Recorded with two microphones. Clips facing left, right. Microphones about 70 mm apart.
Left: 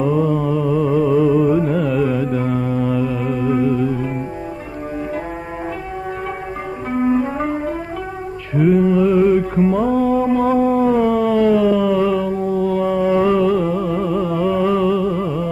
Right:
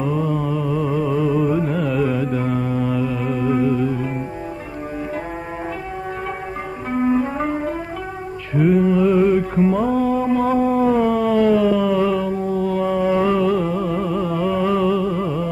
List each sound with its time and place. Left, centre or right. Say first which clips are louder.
0.0 s a sound: left 4 dB; left
1.2 s music: left 4 dB; centre
1.9 s carnatic music: left 2 dB; centre
3.3 s music: left 1 dB; centre
7.1 s music: left 1 dB; centre
8.5 s music: left 2 dB; centre
10.8 s a sound: left 2 dB; centre